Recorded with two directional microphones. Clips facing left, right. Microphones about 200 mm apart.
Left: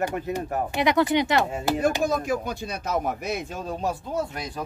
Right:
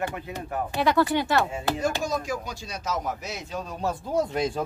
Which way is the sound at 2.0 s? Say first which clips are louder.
Left 4 dB; 55° left (ahead or behind).